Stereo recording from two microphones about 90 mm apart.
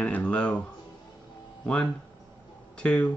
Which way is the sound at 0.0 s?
15° left (ahead or behind).